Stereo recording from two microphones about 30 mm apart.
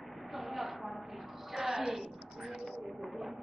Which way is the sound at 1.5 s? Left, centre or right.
Centre.